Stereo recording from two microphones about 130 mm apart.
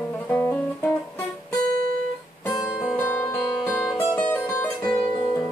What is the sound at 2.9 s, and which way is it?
Music, 15° left (ahead or behind).